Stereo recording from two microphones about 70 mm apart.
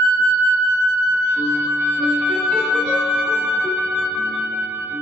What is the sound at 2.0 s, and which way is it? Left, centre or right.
Music, right.